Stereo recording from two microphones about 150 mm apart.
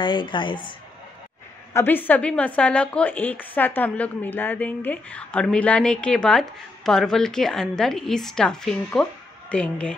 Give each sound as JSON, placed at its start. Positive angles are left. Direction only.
{"t": 0.0, "sound": "a woman's voice", "side_deg": 30}
{"t": 1.7, "sound": "speech", "side_deg": 15}